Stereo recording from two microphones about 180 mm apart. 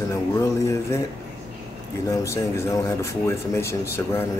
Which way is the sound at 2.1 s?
15° left (ahead or behind).